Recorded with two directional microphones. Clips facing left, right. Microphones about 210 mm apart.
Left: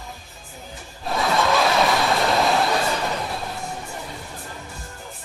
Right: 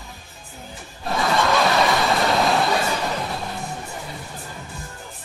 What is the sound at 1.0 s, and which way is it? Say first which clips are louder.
Snicker: even; centre (ahead or behind).